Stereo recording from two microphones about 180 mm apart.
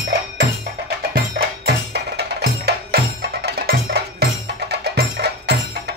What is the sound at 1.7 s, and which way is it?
Music, 65° right (ahead or behind).